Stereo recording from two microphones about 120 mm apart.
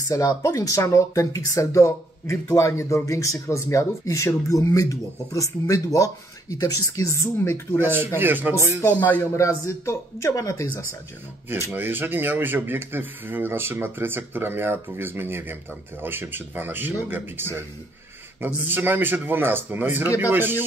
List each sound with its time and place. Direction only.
0.1 s speech: 30° left (ahead or behind)
7.8 s speech: 15° right (ahead or behind)
9.0 s a man's voice: 15° left (ahead or behind)
9.4 s speech: 25° left (ahead or behind)
11.7 s speech: 15° right (ahead or behind)